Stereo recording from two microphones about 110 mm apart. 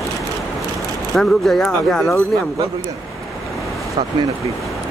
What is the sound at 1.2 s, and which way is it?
Speech, 5° left (ahead or behind).